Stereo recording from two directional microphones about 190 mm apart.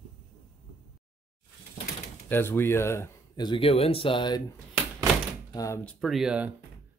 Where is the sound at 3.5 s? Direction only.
30° left (ahead or behind).